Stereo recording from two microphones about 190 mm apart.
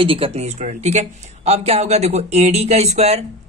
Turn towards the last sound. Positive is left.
turn(degrees=-35)  # may be behind; listen again after turning